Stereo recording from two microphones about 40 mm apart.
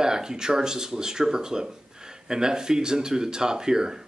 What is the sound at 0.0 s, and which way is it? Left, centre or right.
Speech, centre.